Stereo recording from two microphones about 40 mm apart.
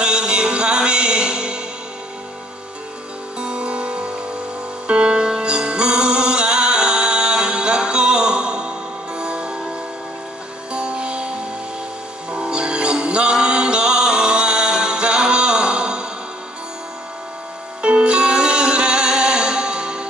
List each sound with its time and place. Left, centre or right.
0.0 s music: right
3.3 s music: right
10.7 s music: right
17.8 s music: right